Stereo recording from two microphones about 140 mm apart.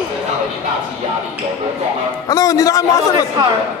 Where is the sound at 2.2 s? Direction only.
25° left (ahead or behind).